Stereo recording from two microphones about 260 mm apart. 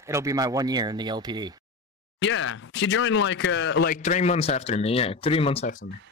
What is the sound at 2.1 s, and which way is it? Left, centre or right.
Speech, left.